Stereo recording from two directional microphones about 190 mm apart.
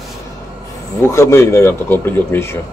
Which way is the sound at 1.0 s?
15° left (ahead or behind).